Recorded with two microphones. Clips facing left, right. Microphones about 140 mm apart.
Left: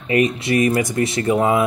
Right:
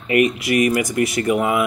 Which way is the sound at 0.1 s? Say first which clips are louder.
Even; 25° left (ahead or behind).